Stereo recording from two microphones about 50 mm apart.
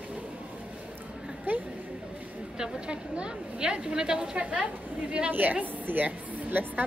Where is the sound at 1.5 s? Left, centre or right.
Right.